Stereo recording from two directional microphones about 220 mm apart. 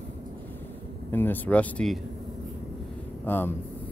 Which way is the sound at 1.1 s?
10° left (ahead or behind).